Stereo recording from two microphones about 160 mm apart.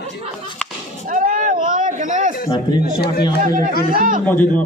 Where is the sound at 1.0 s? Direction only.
55° right (ahead or behind).